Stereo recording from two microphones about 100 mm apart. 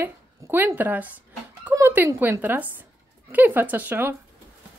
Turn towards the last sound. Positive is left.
turn(degrees=-20)  # may be behind; listen again after turning